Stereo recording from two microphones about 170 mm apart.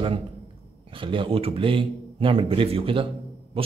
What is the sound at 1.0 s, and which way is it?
A man's voice, 30° right (ahead or behind).